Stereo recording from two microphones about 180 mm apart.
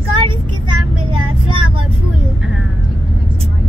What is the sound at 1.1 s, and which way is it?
Vehicle, 30° right (ahead or behind).